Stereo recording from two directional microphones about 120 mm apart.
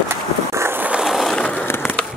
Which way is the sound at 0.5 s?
20° right (ahead or behind).